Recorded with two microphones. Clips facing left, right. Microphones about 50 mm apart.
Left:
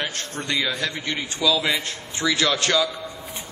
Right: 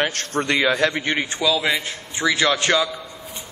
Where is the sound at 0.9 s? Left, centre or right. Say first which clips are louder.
Right 5 dB; right.